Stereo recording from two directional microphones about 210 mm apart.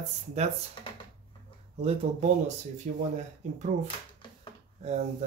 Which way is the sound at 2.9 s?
35° right (ahead or behind).